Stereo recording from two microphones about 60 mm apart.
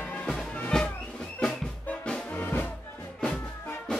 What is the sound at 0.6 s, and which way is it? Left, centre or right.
Music, centre.